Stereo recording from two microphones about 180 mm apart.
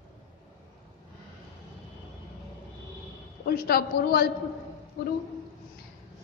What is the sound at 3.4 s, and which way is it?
Speech, 60° left (ahead or behind).